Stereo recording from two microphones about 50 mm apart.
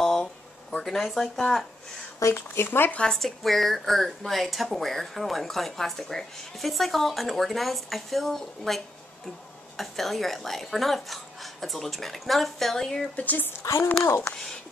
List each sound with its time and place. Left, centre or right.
0.0 s a sound: centre
0.8 s speech: centre
2.3 s speech: left
3.1 s speech: centre
13.1 s a woman's voice: left
14.2 s speech: centre